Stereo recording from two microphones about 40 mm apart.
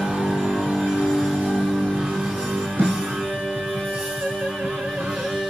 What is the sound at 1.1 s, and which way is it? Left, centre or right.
Music, centre.